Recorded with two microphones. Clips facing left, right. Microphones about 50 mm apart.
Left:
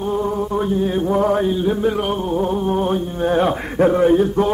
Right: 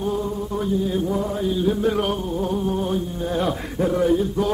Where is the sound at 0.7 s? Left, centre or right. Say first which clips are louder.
Left 5 dB; left.